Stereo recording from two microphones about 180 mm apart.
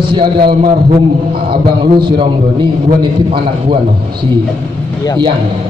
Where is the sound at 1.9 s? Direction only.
25° right (ahead or behind).